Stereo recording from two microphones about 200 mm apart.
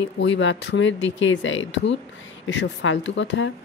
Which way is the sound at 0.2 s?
65° left (ahead or behind).